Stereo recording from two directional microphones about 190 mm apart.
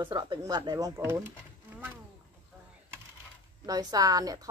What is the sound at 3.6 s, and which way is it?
Speech, 20° right (ahead or behind).